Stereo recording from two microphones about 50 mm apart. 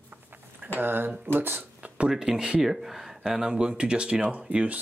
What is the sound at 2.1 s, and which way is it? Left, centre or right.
Speech, centre.